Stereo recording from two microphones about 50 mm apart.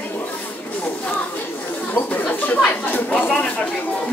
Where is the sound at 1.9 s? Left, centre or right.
Left.